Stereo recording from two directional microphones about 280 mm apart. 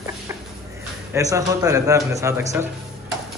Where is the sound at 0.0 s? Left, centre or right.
Centre.